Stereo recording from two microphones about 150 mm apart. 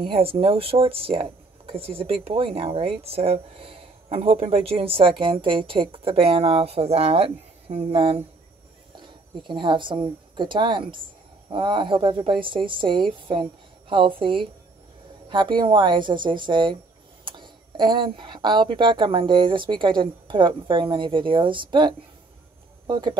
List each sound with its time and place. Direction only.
0.0 s speech: 40° right (ahead or behind)